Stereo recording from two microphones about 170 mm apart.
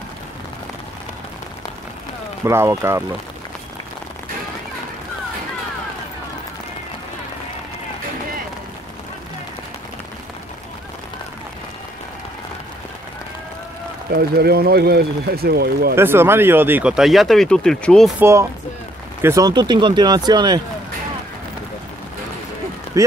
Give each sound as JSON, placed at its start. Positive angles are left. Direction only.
{"t": 2.4, "sound": "speech", "side_deg": -15}
{"t": 14.1, "sound": "speech", "side_deg": -65}
{"t": 15.9, "sound": "speech", "side_deg": -15}
{"t": 18.2, "sound": "speech", "side_deg": -15}
{"t": 23.0, "sound": "speech", "side_deg": -20}